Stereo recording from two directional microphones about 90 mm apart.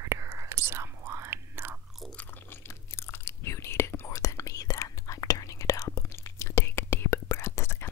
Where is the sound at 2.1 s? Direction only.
25° left (ahead or behind).